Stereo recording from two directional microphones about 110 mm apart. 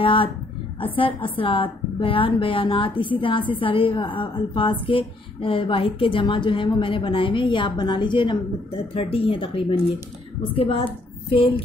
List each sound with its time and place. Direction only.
0.0 s a woman's voice: 50° left (ahead or behind)
8.9 s a woman's voice: 60° left (ahead or behind)